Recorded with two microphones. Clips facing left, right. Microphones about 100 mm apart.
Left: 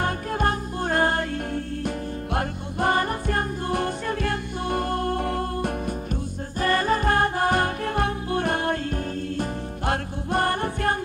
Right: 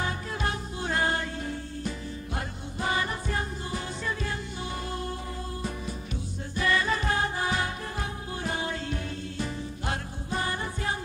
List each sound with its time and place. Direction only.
0.0 s music: 50° left (ahead or behind)
6.6 s music: 45° left (ahead or behind)